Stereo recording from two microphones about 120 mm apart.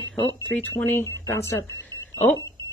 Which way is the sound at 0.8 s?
20° left (ahead or behind).